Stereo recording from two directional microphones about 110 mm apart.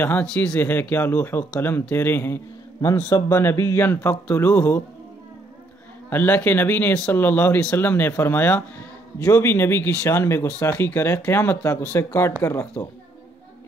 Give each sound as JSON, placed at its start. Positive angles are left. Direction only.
{"t": 0.0, "sound": "a man's voice", "side_deg": 15}
{"t": 6.0, "sound": "speech", "side_deg": 20}